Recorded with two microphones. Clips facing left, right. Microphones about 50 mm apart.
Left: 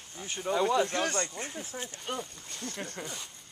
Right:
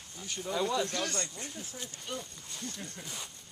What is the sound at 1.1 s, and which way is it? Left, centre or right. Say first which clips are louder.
Speech: left 5 dB; left.